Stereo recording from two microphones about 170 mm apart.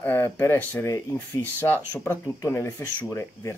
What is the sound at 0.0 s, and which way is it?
Speech, 10° left (ahead or behind).